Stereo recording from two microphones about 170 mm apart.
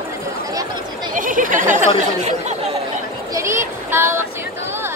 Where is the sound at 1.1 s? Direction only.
50° right (ahead or behind).